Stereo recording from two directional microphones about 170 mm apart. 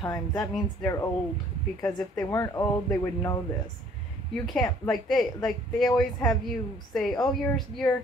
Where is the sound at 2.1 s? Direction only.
20° left (ahead or behind).